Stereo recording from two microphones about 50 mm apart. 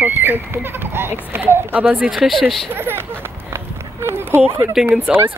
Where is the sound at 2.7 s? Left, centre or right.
Right.